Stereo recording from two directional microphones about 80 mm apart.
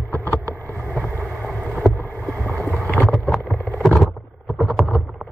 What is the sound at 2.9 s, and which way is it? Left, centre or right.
Boat, centre.